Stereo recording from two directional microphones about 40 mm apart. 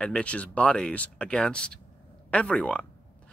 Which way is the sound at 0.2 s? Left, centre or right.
Left.